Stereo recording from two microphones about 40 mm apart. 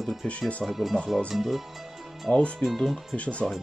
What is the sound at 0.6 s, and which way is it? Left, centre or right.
Speech, centre.